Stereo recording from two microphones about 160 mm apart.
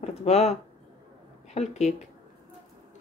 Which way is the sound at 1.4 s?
45° left (ahead or behind).